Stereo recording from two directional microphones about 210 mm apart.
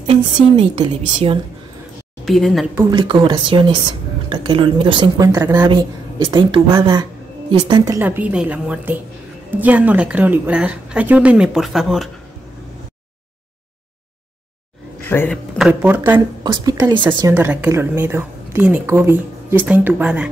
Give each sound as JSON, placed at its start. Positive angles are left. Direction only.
{"t": 0.0, "sound": "a woman's voice", "side_deg": -25}
{"t": 2.2, "sound": "a woman's voice", "side_deg": 0}
{"t": 2.9, "sound": "a woman's voice", "side_deg": -20}
{"t": 15.0, "sound": "speech", "side_deg": 10}
{"t": 15.7, "sound": "a woman's voice", "side_deg": -5}
{"t": 16.9, "sound": "a woman's voice", "side_deg": -20}
{"t": 17.3, "sound": "a woman's voice", "side_deg": -10}